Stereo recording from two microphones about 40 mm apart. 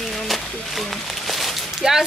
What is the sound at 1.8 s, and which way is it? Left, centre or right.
Speech, centre.